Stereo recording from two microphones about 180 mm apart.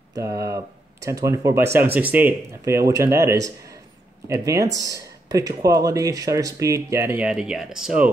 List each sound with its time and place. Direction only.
0.1 s speech: 20° right (ahead or behind)